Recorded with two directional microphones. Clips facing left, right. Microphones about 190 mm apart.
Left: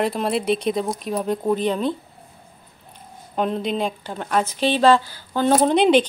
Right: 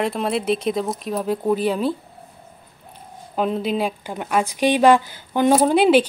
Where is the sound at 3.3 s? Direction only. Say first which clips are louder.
Right 1 dB; 5° right (ahead or behind).